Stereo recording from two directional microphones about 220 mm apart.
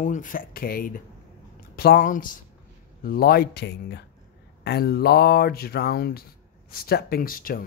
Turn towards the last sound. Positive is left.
turn(degrees=40)  # may be behind; listen again after turning